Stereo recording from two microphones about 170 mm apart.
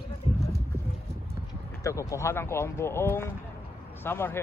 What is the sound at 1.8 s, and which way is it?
Speech, 20° left (ahead or behind).